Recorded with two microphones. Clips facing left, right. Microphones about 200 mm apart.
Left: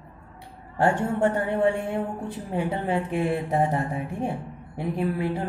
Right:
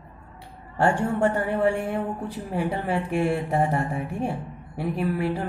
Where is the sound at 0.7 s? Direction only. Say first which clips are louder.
Even; 20° left (ahead or behind).